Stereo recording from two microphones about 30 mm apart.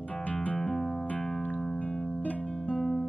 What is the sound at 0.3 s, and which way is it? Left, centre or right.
Music, left.